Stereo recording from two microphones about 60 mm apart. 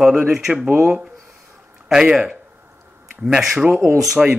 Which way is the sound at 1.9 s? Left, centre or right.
Centre.